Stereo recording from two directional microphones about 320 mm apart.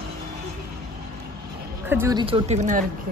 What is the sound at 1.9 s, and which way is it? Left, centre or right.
Speech, centre.